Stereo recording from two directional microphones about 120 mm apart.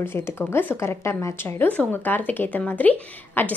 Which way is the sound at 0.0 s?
20° left (ahead or behind).